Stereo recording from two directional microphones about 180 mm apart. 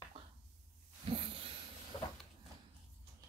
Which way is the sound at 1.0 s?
30° right (ahead or behind).